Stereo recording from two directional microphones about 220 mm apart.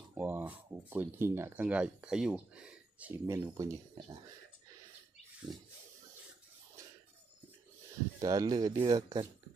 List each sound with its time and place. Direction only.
0.1 s speech: 10° right (ahead or behind)
8.2 s speech: 15° right (ahead or behind)